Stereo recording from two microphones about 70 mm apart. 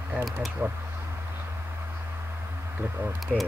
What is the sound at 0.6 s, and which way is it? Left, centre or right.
Speech, right.